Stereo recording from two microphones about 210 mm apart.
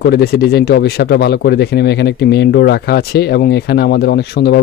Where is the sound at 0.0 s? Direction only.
50° left (ahead or behind).